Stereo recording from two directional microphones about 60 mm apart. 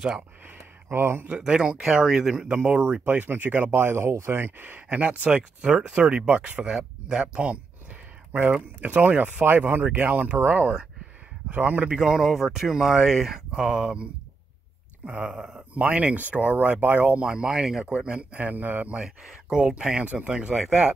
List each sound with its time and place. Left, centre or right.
0.8 s speech: right
1.4 s speech: centre
3.1 s speech: right
4.8 s speech: centre
7.3 s speech: right
12.0 s speech: centre
15.0 s speech: centre
17.3 s speech: centre; by 18.9 s right
19.5 s speech: centre